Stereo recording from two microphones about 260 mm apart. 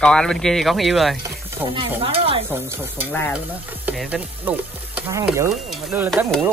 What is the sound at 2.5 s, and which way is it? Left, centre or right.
Speech, centre.